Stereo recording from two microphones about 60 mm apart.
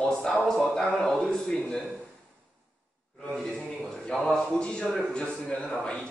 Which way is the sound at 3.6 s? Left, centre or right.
Left.